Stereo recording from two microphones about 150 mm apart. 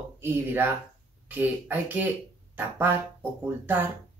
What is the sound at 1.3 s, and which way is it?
Speech, 15° right (ahead or behind).